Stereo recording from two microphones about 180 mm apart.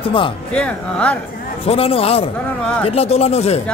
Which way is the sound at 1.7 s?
35° left (ahead or behind).